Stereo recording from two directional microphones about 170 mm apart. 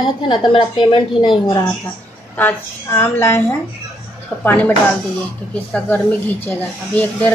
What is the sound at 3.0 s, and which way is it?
Speech, 15° left (ahead or behind).